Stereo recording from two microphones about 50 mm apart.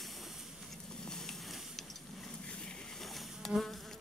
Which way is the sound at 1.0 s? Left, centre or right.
Centre.